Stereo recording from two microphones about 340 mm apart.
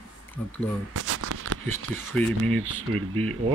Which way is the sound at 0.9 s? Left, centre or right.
Right.